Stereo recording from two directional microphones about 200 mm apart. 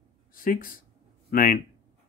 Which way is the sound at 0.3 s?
45° left (ahead or behind).